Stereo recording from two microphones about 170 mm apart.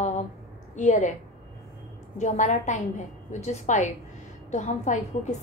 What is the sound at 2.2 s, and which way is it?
A woman's voice, 45° left (ahead or behind).